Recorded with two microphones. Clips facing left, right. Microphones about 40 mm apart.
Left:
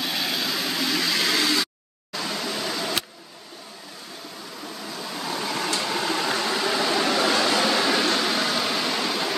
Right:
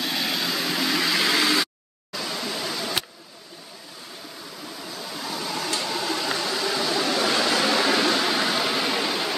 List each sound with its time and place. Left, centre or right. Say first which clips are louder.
0.0 s vehicle: even; centre
2.1 s vehicle: left 1 dB; centre
5.3 s a sound: left 2 dB; left
6.2 s vehicle: left 2 dB; centre
6.5 s a sound: left 2 dB; left; by 8.0 s centre
8.0 s vehicle: right 1 dB; centre